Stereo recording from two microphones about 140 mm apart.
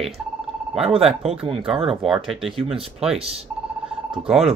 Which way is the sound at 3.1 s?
45° right (ahead or behind).